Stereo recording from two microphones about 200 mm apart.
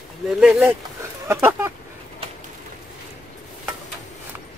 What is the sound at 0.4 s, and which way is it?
Speech, 5° right (ahead or behind).